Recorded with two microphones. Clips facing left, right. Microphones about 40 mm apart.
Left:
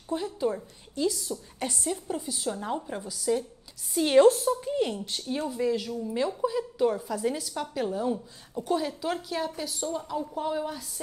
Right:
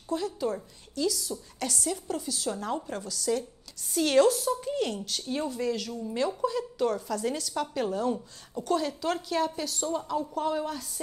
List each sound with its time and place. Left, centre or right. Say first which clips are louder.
0.1 s a woman's voice: left 1 dB; centre
4.2 s a woman's voice: left 4 dB; left
4.5 s speech: left 2 dB; centre
4.7 s a woman's voice: left 2 dB; centre
5.2 s speech: even; centre
5.5 s a woman's voice: left 3 dB; centre
7.5 s a woman's voice: right 1 dB; centre